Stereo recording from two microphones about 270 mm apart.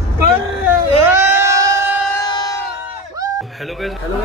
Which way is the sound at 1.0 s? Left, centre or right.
Centre.